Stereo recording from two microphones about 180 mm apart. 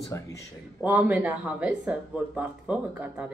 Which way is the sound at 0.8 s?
10° right (ahead or behind).